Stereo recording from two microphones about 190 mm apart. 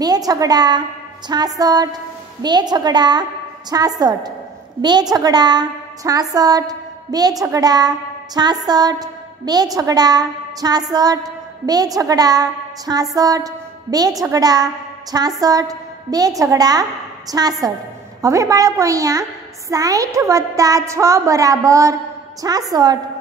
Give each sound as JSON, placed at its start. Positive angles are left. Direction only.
{"t": 0.0, "sound": "a woman's voice", "side_deg": -20}